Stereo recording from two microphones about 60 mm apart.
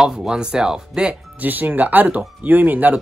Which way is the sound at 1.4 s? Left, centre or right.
Right.